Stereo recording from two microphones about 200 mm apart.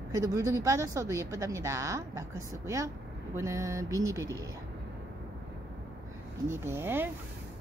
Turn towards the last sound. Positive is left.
turn(degrees=-10)  # may be behind; listen again after turning